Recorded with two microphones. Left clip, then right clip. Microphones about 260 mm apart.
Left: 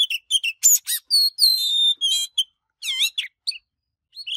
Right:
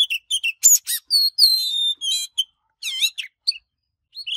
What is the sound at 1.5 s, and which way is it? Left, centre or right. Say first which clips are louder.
Alarm: even; centre.